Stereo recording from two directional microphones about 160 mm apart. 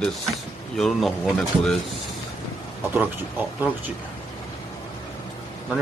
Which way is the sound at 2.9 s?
10° right (ahead or behind).